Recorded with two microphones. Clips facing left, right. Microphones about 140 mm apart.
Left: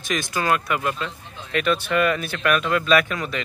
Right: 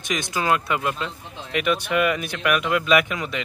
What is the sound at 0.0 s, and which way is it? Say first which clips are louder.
Speech: left 1 dB; 20° right (ahead or behind).